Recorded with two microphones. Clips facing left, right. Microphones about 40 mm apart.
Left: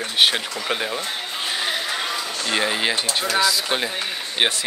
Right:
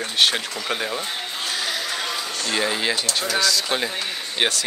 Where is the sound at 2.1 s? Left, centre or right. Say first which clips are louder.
Left 1 dB; centre.